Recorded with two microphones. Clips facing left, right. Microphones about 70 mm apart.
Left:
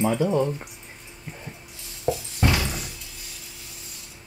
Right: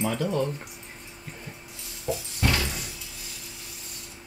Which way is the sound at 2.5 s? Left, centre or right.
Centre.